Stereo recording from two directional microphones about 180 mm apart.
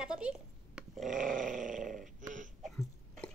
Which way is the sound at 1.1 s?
50° right (ahead or behind).